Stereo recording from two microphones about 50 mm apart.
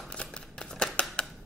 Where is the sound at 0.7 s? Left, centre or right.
Centre.